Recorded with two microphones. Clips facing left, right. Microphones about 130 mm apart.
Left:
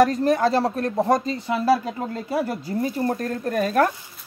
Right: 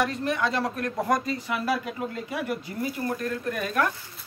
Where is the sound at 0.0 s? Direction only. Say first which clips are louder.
Left 8 dB; 40° left (ahead or behind).